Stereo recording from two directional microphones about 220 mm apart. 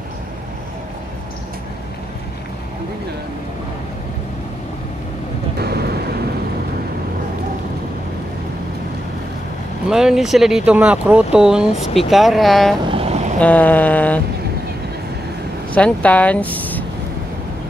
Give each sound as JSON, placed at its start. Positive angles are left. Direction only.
{"t": 5.6, "sound": "vehicle", "side_deg": -45}
{"t": 9.8, "sound": "speech", "side_deg": 0}
{"t": 12.9, "sound": "vehicle", "side_deg": -30}
{"t": 13.4, "sound": "a sound", "side_deg": 5}
{"t": 15.7, "sound": "speech", "side_deg": 5}